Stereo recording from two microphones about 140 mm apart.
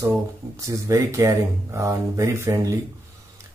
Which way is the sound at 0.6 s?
20° right (ahead or behind).